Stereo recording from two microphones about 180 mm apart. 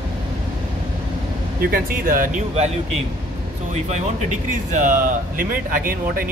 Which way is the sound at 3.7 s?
40° right (ahead or behind).